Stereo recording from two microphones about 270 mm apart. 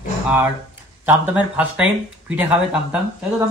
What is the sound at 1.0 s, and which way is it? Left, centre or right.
Speech, centre.